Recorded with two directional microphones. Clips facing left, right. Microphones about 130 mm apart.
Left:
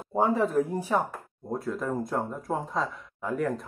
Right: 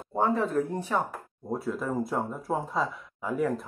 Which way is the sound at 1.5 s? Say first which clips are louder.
Even; 5° right (ahead or behind).